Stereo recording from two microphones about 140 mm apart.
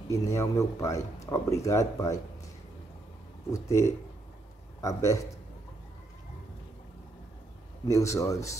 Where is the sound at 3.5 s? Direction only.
20° left (ahead or behind).